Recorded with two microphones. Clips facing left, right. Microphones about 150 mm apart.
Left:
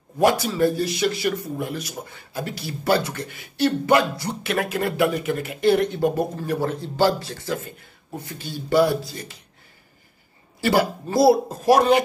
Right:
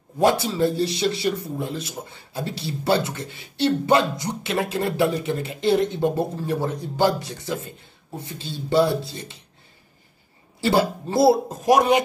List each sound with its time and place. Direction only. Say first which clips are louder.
0.5 s speech: left 1 dB; 30° right (ahead or behind)
11.1 s speech: left 1 dB; 25° right (ahead or behind)